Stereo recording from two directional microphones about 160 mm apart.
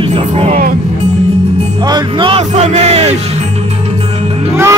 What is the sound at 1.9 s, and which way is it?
Music, 30° right (ahead or behind).